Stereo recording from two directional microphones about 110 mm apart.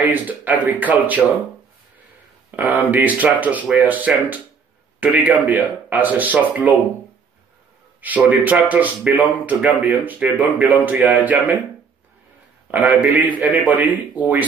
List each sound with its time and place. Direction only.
0.0 s speech: 15° right (ahead or behind)
2.5 s speech: 15° right (ahead or behind)
8.0 s speech: 15° right (ahead or behind)
12.7 s speech: 15° right (ahead or behind)